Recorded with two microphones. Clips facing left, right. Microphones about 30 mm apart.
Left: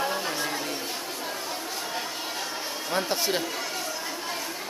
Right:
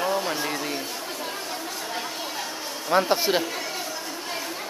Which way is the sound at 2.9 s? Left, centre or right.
Centre.